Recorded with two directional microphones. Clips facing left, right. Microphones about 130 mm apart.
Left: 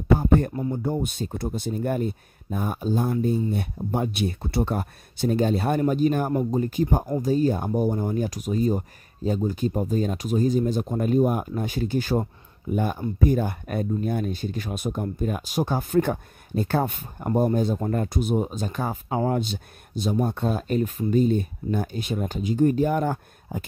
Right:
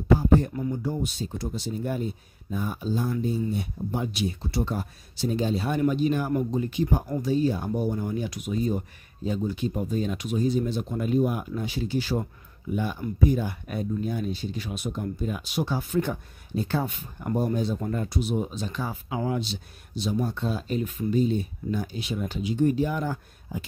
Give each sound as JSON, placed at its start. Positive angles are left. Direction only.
{"t": 0.1, "sound": "speech", "side_deg": 55}
{"t": 17.3, "sound": "speech", "side_deg": 35}